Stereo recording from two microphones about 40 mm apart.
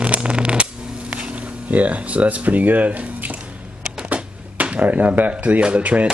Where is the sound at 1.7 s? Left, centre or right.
Right.